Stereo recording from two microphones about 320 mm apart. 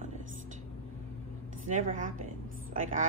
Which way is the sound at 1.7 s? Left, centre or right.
Right.